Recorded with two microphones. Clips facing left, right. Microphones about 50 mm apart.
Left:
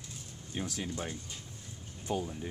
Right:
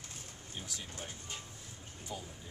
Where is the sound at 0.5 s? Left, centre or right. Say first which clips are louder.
Left 9 dB; left.